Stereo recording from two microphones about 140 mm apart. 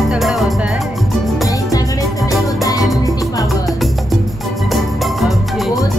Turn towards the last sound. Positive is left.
turn(degrees=0)  # may be behind; listen again after turning